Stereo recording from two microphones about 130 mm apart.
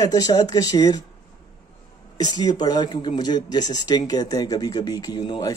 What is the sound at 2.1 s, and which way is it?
A man's voice, 30° left (ahead or behind).